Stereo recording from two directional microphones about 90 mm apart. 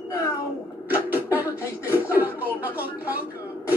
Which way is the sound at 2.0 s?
20° right (ahead or behind).